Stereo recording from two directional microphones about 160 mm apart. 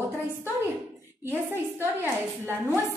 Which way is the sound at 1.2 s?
15° right (ahead or behind).